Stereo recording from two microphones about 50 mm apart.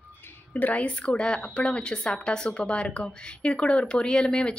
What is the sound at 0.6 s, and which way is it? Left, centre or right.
A woman's voice, left.